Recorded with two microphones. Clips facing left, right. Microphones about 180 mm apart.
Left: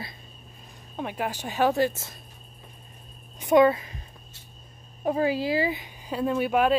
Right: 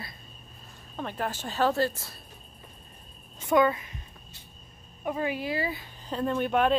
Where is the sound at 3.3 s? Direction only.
20° left (ahead or behind).